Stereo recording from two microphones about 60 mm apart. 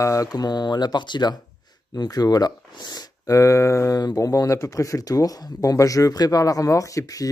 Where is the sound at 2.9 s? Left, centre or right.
Left.